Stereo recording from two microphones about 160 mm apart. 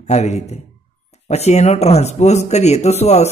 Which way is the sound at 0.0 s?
45° left (ahead or behind).